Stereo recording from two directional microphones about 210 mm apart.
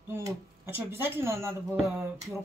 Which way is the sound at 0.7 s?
10° right (ahead or behind).